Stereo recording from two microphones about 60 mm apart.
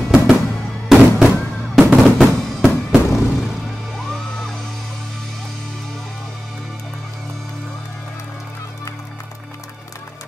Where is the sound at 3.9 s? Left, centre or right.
Centre.